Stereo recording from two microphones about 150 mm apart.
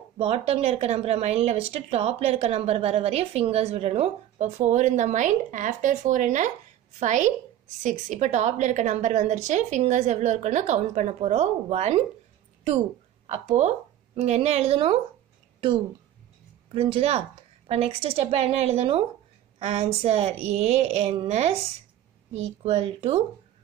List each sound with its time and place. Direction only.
0.2 s a woman's voice: 40° right (ahead or behind)
13.3 s a woman's voice: 45° right (ahead or behind)
16.7 s a woman's voice: 40° right (ahead or behind)